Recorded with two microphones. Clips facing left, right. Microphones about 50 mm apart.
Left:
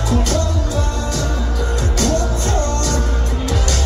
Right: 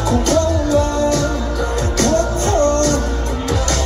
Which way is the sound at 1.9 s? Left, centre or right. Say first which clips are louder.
Right 4 dB; right.